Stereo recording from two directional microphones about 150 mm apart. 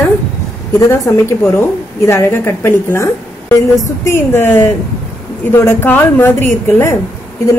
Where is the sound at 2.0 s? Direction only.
15° left (ahead or behind).